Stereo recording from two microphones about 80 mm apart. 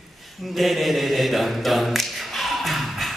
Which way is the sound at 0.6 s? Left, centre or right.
Centre.